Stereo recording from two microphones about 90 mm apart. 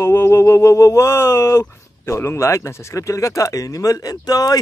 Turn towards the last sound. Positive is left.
turn(degrees=45)  # may be behind; listen again after turning